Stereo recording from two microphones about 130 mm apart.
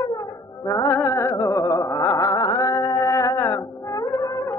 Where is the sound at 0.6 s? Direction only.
25° left (ahead or behind).